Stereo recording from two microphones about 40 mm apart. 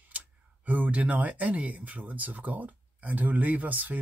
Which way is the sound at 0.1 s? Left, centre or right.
Right.